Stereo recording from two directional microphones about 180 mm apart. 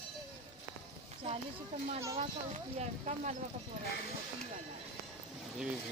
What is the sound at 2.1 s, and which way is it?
Speech, 40° right (ahead or behind).